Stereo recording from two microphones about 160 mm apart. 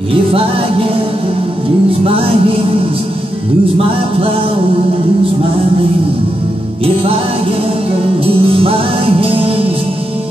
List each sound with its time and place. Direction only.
0.1 s music: 35° right (ahead or behind)
2.0 s music: 35° right (ahead or behind)
8.3 s music: 35° right (ahead or behind)